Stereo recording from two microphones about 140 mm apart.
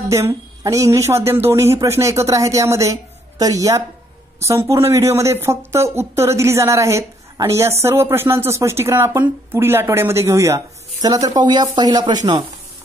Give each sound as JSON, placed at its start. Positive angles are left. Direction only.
{"t": 0.1, "sound": "speech", "side_deg": -20}